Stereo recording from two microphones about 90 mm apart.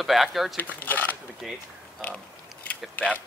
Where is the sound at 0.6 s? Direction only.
20° left (ahead or behind).